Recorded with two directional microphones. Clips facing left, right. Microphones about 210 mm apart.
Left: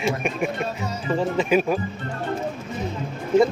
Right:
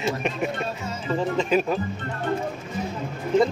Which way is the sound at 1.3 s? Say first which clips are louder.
Left 2 dB; 10° left (ahead or behind).